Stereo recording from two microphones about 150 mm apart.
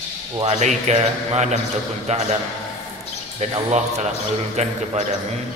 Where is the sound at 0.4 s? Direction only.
50° right (ahead or behind).